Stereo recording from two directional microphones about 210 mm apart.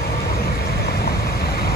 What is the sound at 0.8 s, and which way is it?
Vehicle, 45° left (ahead or behind).